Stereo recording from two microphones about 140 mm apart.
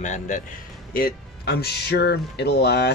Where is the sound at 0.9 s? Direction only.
90° left.